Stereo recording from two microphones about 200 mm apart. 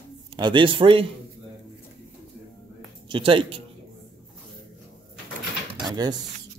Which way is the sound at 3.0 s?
25° right (ahead or behind).